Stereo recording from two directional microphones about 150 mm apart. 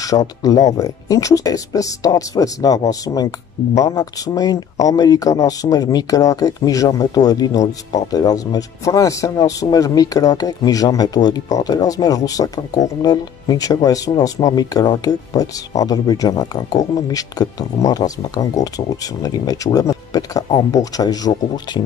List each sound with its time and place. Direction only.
0.4 s speech: 25° left (ahead or behind)